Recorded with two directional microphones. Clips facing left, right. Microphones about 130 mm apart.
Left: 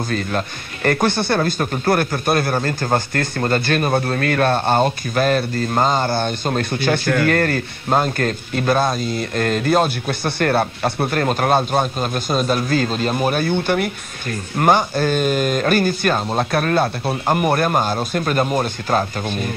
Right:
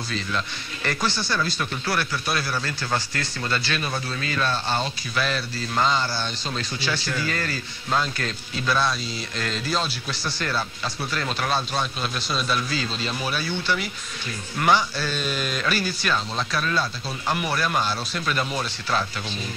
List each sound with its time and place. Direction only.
0.8 s speech: 55° left (ahead or behind)